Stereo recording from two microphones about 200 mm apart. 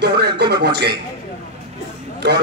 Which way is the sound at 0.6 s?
55° right (ahead or behind).